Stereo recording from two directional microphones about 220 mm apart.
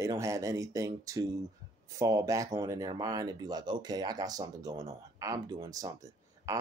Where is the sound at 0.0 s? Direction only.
15° right (ahead or behind).